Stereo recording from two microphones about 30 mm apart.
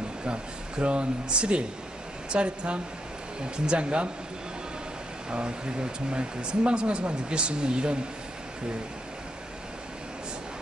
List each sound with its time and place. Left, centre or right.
0.2 s speech: right
5.3 s speech: right